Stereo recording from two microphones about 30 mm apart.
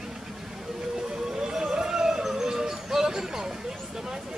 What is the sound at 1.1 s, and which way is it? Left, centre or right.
Music, right.